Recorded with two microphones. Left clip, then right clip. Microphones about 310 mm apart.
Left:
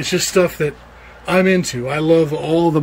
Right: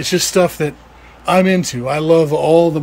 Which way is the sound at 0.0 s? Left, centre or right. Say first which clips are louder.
Right 2 dB; centre.